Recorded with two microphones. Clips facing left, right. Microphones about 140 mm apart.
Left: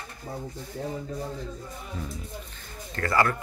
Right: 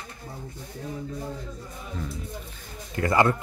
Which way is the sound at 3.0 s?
20° right (ahead or behind).